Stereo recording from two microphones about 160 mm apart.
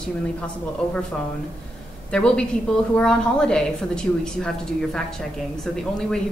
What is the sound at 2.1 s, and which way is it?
A woman's voice, 5° left (ahead or behind).